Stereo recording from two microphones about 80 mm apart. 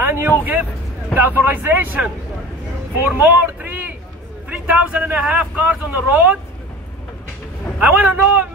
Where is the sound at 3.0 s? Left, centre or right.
Right.